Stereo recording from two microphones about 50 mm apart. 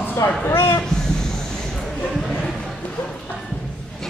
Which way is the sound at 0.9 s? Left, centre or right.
Centre.